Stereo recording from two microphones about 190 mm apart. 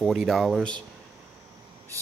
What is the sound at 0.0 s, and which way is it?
Speech, centre (ahead or behind).